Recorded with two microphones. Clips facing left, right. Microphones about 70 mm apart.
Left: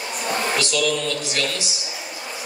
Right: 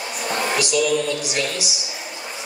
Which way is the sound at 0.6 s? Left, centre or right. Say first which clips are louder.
Right 2 dB; centre.